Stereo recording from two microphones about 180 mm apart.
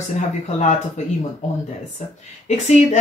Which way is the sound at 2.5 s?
40° left (ahead or behind).